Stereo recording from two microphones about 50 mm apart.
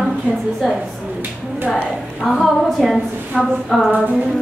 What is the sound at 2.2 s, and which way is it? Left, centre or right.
Speech, centre.